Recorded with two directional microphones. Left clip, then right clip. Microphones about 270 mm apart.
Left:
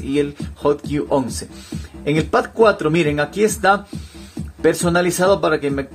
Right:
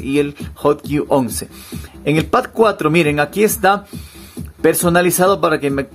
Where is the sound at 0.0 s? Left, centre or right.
Right.